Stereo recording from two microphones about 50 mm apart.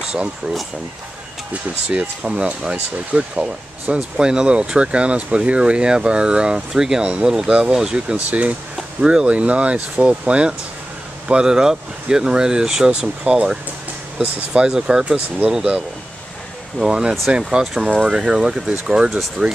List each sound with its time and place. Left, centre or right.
1.5 s speech: right
8.3 s speech: right
8.7 s speech: centre